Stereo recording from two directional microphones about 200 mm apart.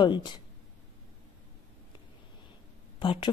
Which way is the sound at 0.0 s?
25° left (ahead or behind).